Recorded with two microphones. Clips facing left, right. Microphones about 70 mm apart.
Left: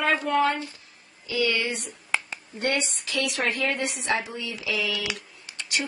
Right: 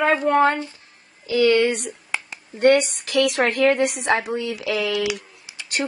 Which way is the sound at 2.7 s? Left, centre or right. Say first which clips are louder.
Right 9 dB; right.